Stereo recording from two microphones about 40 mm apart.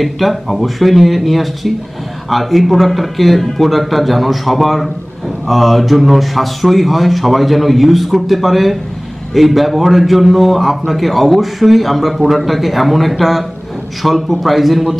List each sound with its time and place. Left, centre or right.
0.0 s a man's voice: centre